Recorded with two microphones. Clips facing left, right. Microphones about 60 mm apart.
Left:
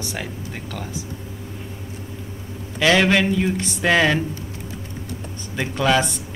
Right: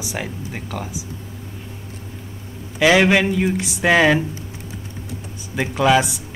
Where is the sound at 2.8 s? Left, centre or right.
Centre.